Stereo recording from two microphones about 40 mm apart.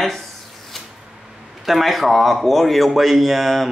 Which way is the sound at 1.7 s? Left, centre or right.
Centre.